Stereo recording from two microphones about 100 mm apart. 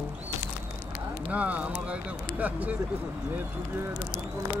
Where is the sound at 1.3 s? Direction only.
15° right (ahead or behind).